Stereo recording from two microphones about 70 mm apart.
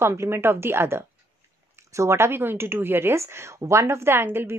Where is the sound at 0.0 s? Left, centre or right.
Right.